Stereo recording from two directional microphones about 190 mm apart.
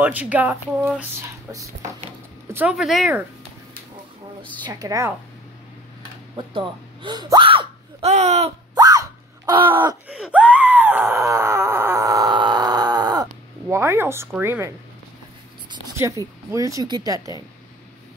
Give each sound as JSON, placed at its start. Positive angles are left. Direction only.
{"t": 0.0, "sound": "speech", "side_deg": -10}
{"t": 2.5, "sound": "speech", "side_deg": -5}
{"t": 4.6, "sound": "a woman's voice", "side_deg": -20}
{"t": 6.3, "sound": "speech", "side_deg": -25}
{"t": 8.7, "sound": "screaming", "side_deg": -20}
{"t": 10.1, "sound": "screaming", "side_deg": -5}
{"t": 14.4, "sound": "speech", "side_deg": -15}
{"t": 15.7, "sound": "speech", "side_deg": -20}